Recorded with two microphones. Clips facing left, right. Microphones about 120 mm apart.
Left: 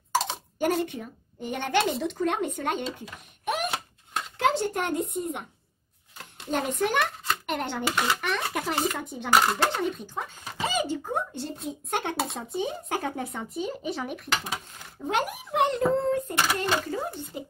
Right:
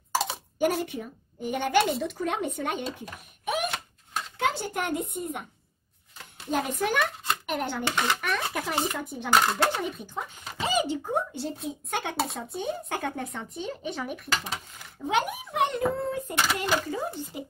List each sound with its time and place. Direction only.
0.1 s speech: 5° right (ahead or behind)
4.1 s a child's voice: centre (ahead or behind)
9.7 s speech: 10° right (ahead or behind)
10.6 s a sound: 15° right (ahead or behind)
11.3 s speech: 5° right (ahead or behind)